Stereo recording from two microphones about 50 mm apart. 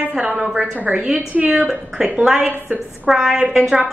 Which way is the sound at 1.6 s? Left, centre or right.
Centre.